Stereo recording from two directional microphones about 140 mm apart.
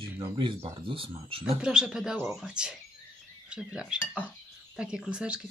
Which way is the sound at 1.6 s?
5° right (ahead or behind).